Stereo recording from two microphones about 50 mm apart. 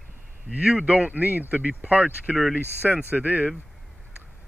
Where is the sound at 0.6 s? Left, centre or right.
Right.